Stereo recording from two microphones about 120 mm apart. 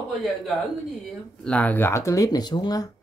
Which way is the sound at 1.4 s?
10° left (ahead or behind).